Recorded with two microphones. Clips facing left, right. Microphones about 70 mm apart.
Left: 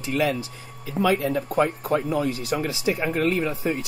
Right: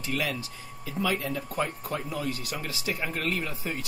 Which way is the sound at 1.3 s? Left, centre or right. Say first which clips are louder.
Left 8 dB; left.